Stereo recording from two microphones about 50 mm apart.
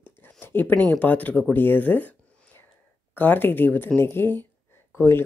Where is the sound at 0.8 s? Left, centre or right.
Left.